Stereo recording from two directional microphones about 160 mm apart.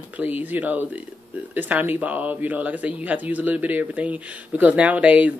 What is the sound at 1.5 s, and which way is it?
Speech, 10° right (ahead or behind).